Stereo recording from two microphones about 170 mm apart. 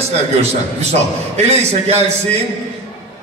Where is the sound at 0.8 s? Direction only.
40° right (ahead or behind).